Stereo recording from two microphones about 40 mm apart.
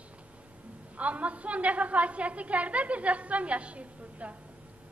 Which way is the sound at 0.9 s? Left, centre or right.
Right.